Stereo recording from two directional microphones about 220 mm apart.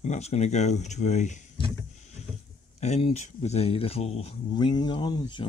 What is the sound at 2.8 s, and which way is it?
Speech, 30° left (ahead or behind).